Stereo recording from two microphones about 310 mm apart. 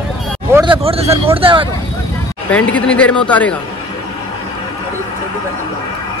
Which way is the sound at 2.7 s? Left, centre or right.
Centre.